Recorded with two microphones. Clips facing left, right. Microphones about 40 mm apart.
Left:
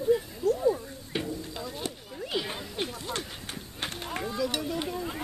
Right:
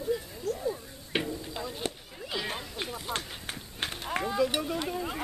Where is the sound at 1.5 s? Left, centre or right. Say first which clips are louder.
Even; centre.